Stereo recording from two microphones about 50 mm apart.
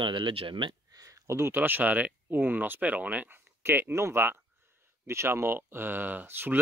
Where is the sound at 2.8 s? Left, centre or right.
Right.